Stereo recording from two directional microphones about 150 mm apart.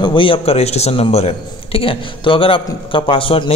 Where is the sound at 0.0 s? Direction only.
35° left (ahead or behind).